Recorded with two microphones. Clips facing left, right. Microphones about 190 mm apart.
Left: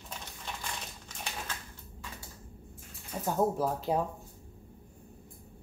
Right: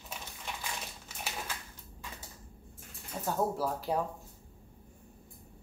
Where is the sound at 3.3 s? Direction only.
20° left (ahead or behind).